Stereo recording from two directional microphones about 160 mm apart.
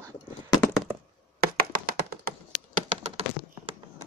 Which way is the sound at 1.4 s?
65° right (ahead or behind).